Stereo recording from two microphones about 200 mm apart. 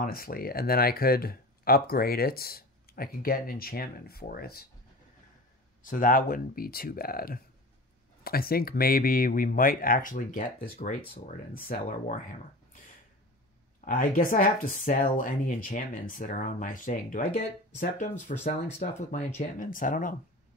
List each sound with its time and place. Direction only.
0.0 s speech: 45° left (ahead or behind)
5.8 s speech: 40° left (ahead or behind)
13.7 s speech: 40° left (ahead or behind)